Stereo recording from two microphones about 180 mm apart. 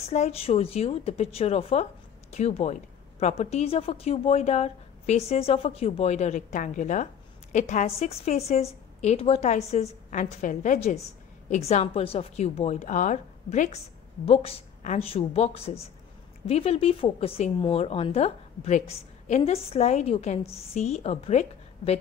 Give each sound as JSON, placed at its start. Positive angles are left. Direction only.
{"t": 0.0, "sound": "a woman's voice", "side_deg": 35}